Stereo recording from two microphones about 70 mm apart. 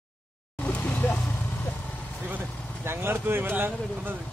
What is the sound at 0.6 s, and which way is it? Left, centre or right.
Vehicle, left.